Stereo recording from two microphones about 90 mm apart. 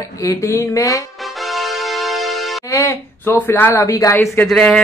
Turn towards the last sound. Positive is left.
turn(degrees=5)  # may be behind; listen again after turning